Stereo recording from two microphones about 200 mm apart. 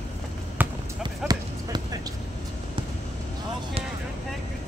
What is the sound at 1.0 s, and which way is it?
Music, 20° right (ahead or behind).